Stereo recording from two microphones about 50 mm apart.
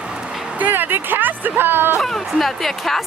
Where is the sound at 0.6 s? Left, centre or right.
Right.